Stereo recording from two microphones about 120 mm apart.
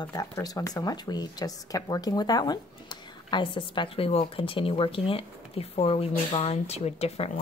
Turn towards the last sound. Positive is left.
turn(degrees=60)  # may be behind; listen again after turning